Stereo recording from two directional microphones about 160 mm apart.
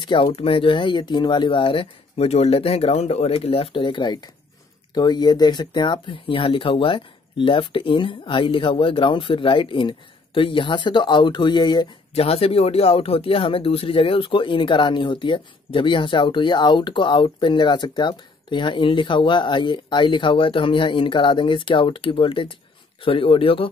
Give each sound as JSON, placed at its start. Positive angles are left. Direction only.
{"t": 0.0, "sound": "speech", "side_deg": 30}
{"t": 12.1, "sound": "speech", "side_deg": 40}